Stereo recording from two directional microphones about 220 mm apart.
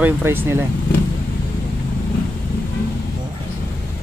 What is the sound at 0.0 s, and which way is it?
Speech, 10° right (ahead or behind).